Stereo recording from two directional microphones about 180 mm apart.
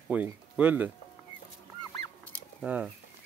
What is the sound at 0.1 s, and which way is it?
Speech, 10° right (ahead or behind).